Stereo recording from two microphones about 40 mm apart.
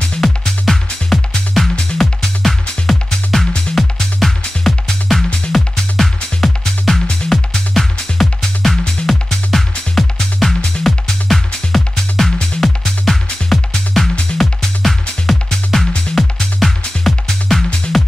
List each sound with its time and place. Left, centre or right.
0.2 s music: centre